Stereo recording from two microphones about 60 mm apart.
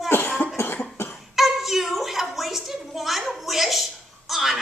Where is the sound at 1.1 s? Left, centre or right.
Centre.